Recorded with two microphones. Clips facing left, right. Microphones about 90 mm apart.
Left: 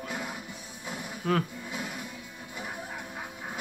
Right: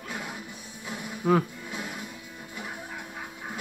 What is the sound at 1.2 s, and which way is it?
Speech, 15° right (ahead or behind).